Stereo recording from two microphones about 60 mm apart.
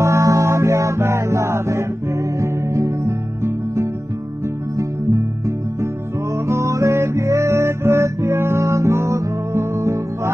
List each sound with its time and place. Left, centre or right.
0.0 s music: right
6.3 s music: right